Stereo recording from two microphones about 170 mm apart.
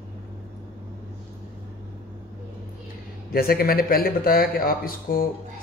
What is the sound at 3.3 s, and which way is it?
Speech, 60° left (ahead or behind).